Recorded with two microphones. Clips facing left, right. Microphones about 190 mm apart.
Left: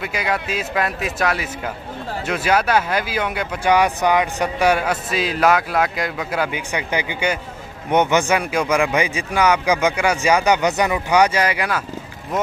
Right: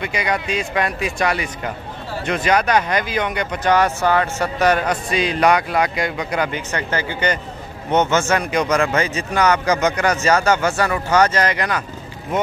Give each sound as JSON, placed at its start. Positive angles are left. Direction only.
{"t": 0.0, "sound": "speech", "side_deg": 5}